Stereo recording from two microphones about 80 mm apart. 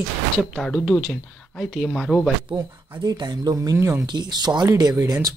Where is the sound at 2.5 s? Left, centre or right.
Right.